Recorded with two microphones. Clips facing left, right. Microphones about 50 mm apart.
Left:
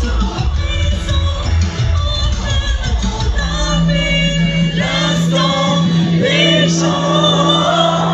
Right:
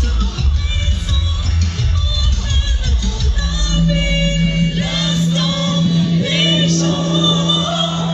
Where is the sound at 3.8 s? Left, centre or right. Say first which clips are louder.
Left 1 dB; left.